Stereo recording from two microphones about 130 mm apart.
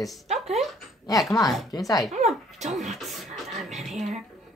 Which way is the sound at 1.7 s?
30° left (ahead or behind).